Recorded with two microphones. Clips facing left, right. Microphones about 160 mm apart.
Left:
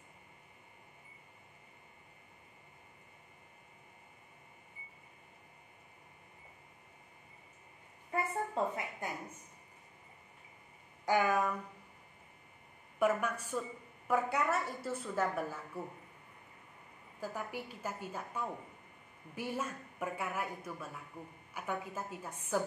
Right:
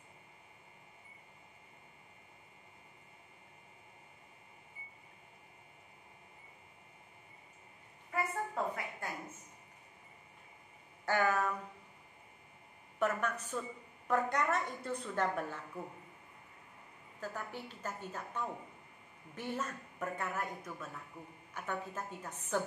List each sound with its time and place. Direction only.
8.1 s a woman's voice: 25° left (ahead or behind)
11.1 s a woman's voice: 10° left (ahead or behind)
13.0 s a woman's voice: 10° left (ahead or behind)
17.2 s a woman's voice: 10° left (ahead or behind)